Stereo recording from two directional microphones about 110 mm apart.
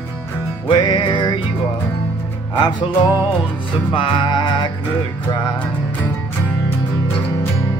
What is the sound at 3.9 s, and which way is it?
Music, 50° left (ahead or behind).